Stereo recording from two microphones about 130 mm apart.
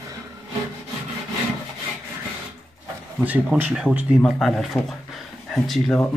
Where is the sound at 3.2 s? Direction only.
10° right (ahead or behind).